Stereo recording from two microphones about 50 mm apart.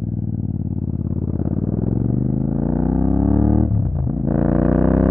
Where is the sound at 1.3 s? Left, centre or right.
Centre.